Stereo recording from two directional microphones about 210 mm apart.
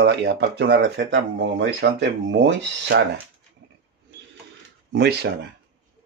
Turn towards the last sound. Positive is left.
turn(degrees=-55)  # may be behind; listen again after turning